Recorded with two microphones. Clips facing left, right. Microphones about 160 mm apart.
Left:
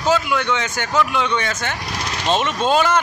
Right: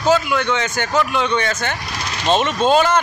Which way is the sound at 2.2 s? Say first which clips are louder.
Right 3 dB; 20° right (ahead or behind).